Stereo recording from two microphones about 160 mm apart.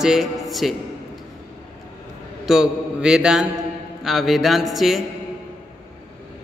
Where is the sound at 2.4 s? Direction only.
5° right (ahead or behind).